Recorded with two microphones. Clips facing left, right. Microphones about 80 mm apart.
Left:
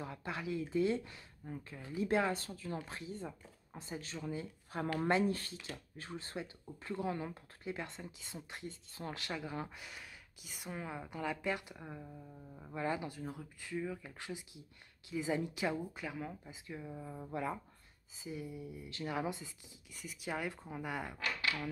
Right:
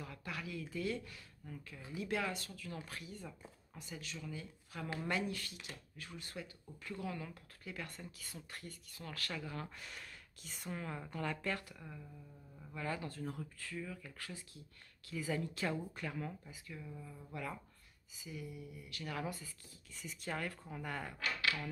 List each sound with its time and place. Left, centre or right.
0.0 s speech: left
9.8 s speech: centre
11.8 s speech: left
13.2 s speech: centre
13.6 s speech: left
16.4 s speech: left
19.9 s speech: centre